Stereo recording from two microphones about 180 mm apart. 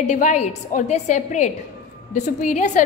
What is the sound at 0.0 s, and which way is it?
A woman's voice, 40° left (ahead or behind).